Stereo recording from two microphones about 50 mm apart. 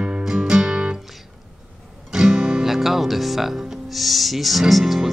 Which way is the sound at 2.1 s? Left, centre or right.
Centre.